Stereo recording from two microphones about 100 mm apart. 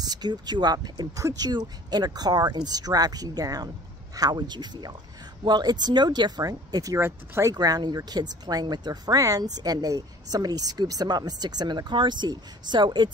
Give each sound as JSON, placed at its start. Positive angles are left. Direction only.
{"t": 0.0, "sound": "speech", "side_deg": -45}
{"t": 7.0, "sound": "speech", "side_deg": -25}
{"t": 7.5, "sound": "speech", "side_deg": -40}